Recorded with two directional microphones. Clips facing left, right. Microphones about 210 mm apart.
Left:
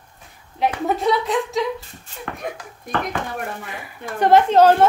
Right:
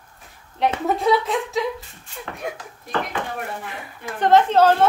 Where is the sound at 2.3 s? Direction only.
55° left (ahead or behind).